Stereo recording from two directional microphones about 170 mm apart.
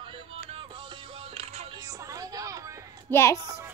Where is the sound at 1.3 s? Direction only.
40° right (ahead or behind).